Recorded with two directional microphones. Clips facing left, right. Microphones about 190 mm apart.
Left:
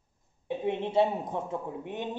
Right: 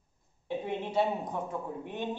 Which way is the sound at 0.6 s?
25° left (ahead or behind).